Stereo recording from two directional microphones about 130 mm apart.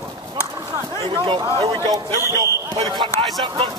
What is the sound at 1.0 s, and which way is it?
Speech, 40° right (ahead or behind).